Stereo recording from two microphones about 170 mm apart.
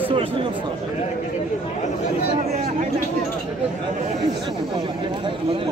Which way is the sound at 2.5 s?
50° right (ahead or behind).